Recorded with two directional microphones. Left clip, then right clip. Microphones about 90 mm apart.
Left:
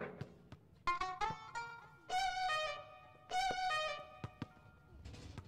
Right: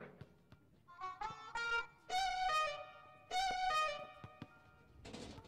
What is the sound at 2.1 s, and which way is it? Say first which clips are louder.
Music: left 1 dB; centre (ahead or behind).